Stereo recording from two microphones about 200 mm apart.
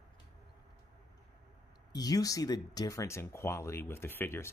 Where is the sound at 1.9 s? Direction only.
20° left (ahead or behind).